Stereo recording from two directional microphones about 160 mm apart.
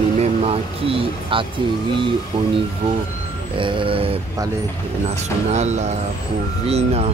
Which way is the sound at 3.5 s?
30° right (ahead or behind).